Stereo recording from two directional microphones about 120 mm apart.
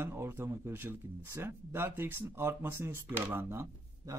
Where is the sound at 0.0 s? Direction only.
20° right (ahead or behind).